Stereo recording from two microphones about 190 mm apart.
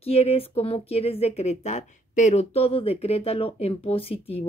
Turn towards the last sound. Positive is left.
turn(degrees=30)  # may be behind; listen again after turning